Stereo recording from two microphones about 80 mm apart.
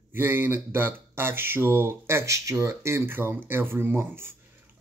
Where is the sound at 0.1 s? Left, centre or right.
Right.